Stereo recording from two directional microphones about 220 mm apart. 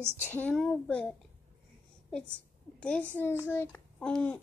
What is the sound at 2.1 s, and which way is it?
A woman's voice, 5° left (ahead or behind).